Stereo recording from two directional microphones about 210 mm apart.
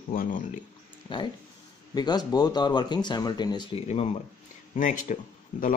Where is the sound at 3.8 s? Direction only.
30° left (ahead or behind).